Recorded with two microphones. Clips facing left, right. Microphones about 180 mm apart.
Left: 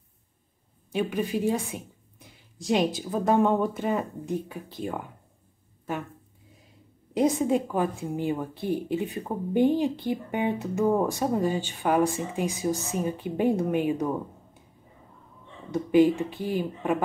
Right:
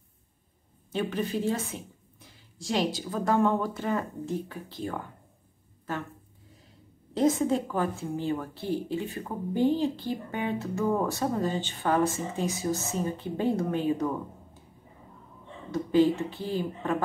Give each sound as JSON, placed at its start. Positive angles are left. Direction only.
{"t": 0.9, "sound": "a woman's voice", "side_deg": 15}
{"t": 7.2, "sound": "a woman's voice", "side_deg": 15}
{"t": 15.7, "sound": "a woman's voice", "side_deg": 15}